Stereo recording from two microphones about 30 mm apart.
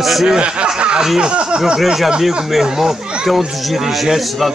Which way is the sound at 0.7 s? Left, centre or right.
Right.